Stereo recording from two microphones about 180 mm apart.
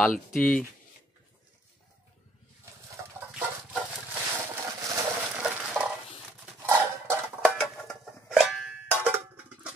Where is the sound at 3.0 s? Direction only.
15° right (ahead or behind).